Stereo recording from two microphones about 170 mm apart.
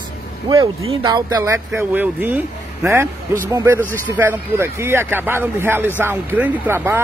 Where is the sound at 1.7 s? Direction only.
10° right (ahead or behind).